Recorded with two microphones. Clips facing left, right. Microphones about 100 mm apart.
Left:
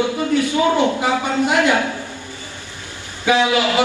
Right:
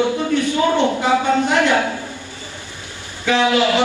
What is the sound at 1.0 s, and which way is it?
Speech, 15° left (ahead or behind).